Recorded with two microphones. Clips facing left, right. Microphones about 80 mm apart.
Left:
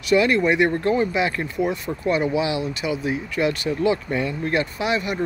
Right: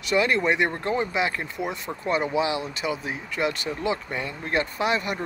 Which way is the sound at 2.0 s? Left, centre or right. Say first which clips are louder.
Left 3 dB; right.